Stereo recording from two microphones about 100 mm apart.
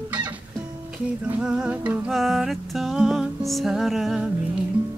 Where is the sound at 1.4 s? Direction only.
10° right (ahead or behind).